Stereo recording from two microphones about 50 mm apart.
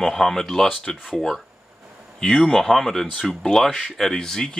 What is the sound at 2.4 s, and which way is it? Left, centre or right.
Speech, centre.